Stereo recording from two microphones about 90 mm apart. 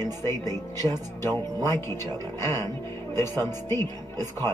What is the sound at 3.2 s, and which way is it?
Speech, 30° left (ahead or behind).